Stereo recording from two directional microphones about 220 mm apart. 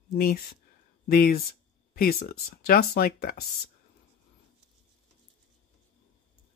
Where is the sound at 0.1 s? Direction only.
45° left (ahead or behind).